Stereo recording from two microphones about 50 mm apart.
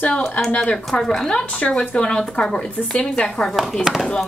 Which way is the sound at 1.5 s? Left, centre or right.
Centre.